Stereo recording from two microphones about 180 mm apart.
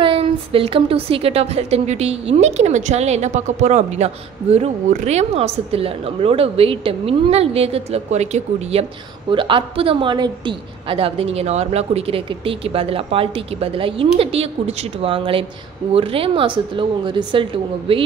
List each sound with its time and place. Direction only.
0.0 s a woman's voice: 30° right (ahead or behind)